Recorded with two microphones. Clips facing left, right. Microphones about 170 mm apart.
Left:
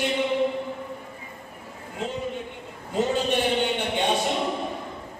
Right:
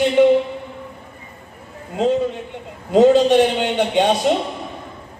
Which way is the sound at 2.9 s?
90° right.